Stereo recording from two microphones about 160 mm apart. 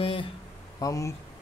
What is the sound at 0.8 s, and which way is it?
Speech, 20° left (ahead or behind).